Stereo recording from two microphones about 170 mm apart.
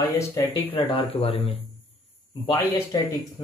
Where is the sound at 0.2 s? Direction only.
15° left (ahead or behind).